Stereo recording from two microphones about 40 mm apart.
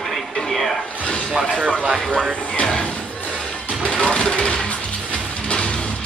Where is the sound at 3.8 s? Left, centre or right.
Left.